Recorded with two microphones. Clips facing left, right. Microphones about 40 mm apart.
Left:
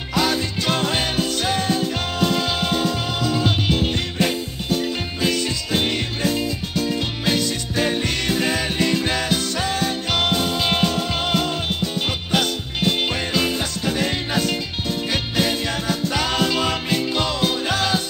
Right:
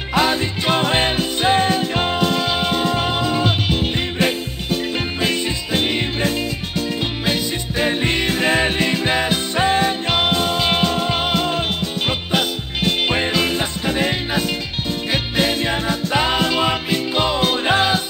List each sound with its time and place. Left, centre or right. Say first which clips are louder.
0.1 s music: right 3 dB; right
2.2 s music: right 2 dB; centre
5.7 s music: right 3 dB; centre
13.0 s music: right 3 dB; right